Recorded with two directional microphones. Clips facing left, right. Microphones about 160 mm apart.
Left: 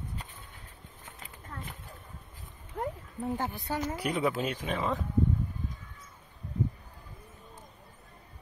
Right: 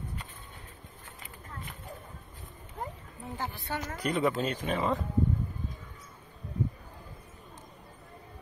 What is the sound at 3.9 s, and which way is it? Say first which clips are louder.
Speech: right 4 dB; 5° left (ahead or behind).